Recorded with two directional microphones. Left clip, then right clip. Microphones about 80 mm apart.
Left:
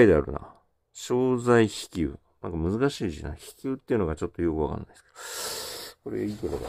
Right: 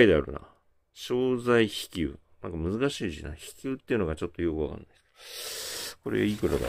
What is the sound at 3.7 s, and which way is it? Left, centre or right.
Speech, left.